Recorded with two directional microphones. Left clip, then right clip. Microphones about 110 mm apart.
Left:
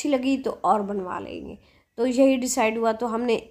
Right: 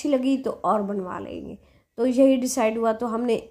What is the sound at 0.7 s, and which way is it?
A woman's voice, 30° right (ahead or behind).